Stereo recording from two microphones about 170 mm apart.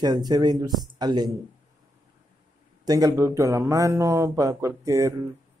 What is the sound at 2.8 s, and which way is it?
Speech, 20° right (ahead or behind).